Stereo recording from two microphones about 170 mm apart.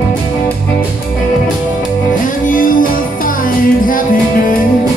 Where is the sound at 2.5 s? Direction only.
55° left (ahead or behind).